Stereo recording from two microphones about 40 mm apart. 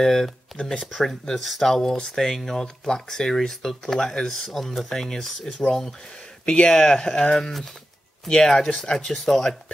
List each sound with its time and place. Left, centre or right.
0.0 s speech: centre
5.5 s speech: left
6.7 s speech: centre